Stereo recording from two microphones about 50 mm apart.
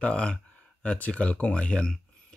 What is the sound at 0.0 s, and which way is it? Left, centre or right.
Speech, left.